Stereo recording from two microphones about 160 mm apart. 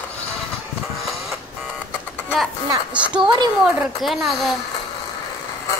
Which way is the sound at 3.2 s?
30° right (ahead or behind).